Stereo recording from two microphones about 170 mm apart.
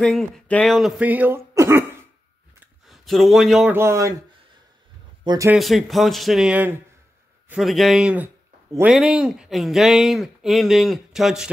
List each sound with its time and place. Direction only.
0.0 s speech: 5° left (ahead or behind); by 1.9 s 15° right (ahead or behind)
2.9 s a man's voice: centre (ahead or behind)
3.7 s speech: 15° right (ahead or behind)
5.2 s speech: 25° right (ahead or behind)
5.5 s speech: centre (ahead or behind)